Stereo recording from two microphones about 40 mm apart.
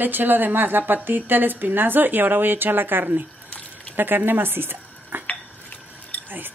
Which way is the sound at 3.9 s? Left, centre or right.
Right.